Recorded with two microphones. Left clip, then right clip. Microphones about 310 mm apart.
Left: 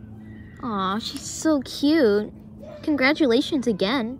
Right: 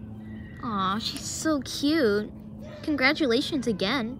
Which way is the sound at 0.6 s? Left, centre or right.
Centre.